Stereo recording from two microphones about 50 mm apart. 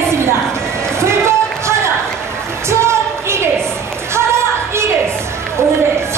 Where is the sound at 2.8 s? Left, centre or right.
Right.